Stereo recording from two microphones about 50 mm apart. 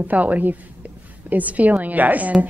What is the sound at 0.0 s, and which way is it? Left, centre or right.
A woman's voice, right.